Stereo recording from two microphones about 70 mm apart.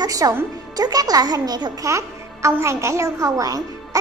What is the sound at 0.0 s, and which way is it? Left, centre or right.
Speech, right.